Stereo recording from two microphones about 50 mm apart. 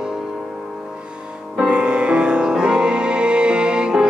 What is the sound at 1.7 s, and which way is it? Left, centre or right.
Music, right.